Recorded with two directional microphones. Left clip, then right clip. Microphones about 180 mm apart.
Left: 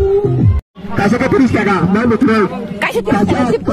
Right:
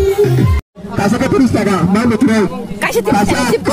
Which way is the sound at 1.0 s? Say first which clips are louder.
Left 1 dB; 45° right (ahead or behind).